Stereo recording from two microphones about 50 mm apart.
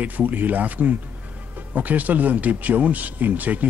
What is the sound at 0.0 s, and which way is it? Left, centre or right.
Speech, right.